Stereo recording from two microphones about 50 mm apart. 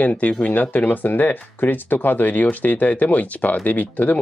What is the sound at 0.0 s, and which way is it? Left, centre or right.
Speech, left.